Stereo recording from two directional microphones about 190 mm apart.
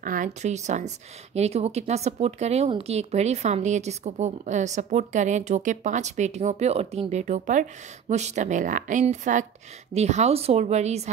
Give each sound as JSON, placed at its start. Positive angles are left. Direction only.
{"t": 0.0, "sound": "speech", "side_deg": -45}